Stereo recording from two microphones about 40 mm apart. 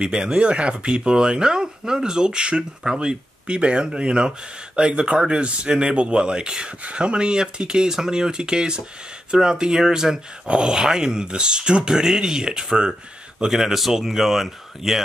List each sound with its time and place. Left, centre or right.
0.0 s speech: right
6.8 s speech: right
13.5 s speech: centre